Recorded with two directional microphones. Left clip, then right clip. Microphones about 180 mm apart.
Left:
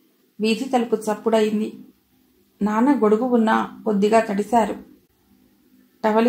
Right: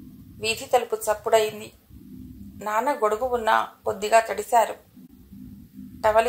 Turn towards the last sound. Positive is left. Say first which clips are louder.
# even
turn(degrees=-35)  # may be behind; listen again after turning